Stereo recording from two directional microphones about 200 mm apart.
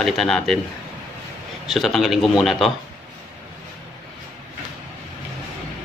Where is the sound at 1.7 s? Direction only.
Centre (ahead or behind).